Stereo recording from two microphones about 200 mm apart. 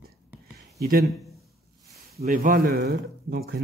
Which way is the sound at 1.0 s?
Centre (ahead or behind).